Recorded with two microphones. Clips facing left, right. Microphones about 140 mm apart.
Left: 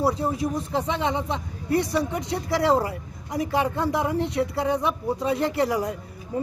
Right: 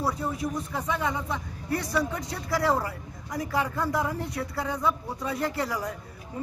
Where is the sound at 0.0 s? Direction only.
30° left (ahead or behind).